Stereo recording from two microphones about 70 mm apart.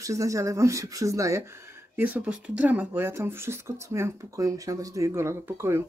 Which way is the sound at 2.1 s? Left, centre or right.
Centre.